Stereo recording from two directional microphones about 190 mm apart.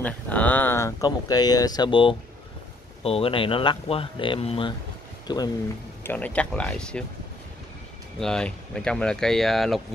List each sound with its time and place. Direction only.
0.0 s speech: 10° left (ahead or behind)
6.0 s speech: 10° left (ahead or behind)
8.2 s speech: 5° left (ahead or behind)